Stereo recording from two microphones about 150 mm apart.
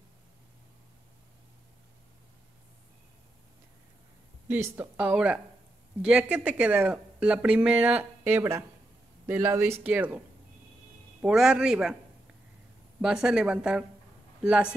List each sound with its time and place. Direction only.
4.5 s speech: 10° right (ahead or behind)
13.0 s a man's voice: 5° right (ahead or behind)